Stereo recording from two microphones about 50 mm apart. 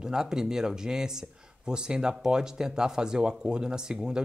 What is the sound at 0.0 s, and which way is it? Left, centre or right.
Speech, centre.